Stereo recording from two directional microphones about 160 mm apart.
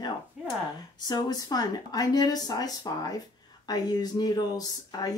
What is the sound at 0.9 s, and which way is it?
Speech, 25° left (ahead or behind).